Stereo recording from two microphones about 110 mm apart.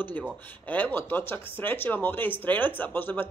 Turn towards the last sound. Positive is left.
turn(degrees=15)  # may be behind; listen again after turning